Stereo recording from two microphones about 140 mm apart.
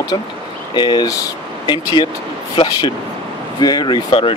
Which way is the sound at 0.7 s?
30° left (ahead or behind).